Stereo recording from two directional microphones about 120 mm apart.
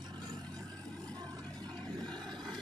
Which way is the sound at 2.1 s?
5° left (ahead or behind).